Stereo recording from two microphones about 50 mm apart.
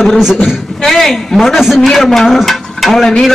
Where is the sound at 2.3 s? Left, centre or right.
Centre.